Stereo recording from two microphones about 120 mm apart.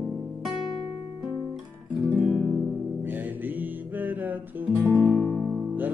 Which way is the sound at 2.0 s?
15° right (ahead or behind).